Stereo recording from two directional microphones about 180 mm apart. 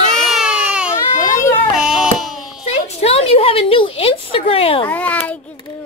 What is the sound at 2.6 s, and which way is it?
A woman's voice, 35° left (ahead or behind).